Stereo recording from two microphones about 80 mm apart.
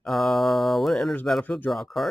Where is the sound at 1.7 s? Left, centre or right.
Centre.